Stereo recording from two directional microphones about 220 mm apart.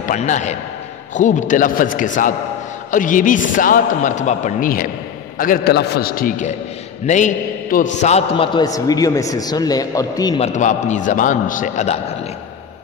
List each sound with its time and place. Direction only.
0.0 s a man's voice: 35° left (ahead or behind); by 10.5 s 20° left (ahead or behind)
10.5 s a man's voice: 35° left (ahead or behind)